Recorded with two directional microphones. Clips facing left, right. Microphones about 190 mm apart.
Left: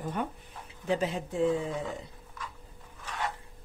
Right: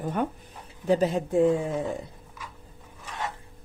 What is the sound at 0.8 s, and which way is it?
Speech, 40° right (ahead or behind).